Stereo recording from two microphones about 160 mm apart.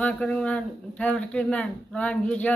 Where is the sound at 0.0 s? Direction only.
5° left (ahead or behind).